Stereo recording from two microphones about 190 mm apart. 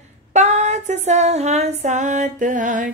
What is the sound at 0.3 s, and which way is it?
Female singing, 35° right (ahead or behind).